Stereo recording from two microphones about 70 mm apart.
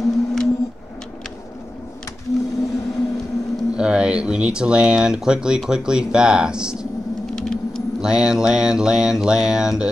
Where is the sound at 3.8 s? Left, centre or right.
Centre.